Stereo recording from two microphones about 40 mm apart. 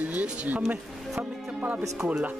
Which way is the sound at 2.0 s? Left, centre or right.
Right.